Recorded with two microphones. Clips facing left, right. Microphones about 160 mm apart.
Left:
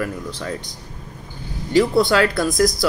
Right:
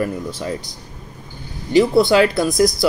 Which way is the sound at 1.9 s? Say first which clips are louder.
Right 3 dB; 5° right (ahead or behind).